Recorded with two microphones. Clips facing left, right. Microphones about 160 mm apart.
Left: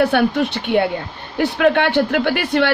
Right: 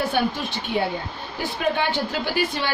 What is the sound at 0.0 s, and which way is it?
A woman's voice, 65° left (ahead or behind).